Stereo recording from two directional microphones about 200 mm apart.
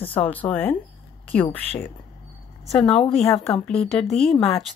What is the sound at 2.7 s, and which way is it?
Speech, 5° left (ahead or behind).